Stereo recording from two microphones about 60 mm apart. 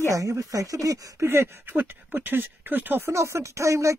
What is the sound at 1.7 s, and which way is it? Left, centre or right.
Speech, right.